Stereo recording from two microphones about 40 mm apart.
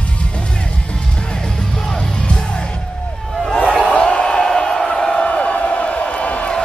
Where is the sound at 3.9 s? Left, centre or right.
Left.